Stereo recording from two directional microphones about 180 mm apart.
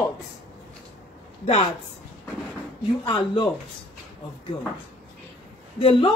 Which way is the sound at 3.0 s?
30° left (ahead or behind).